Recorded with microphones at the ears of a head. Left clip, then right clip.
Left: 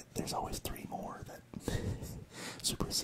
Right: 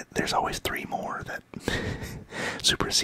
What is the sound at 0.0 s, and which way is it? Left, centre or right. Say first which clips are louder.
Speech: right 13 dB; right.